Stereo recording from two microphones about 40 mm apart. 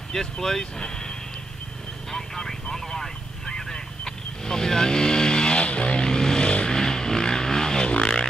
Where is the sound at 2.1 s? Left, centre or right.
Centre.